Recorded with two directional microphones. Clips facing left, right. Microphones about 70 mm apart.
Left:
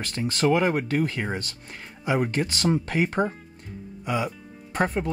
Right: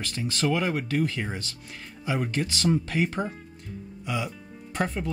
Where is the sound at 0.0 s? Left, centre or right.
Left.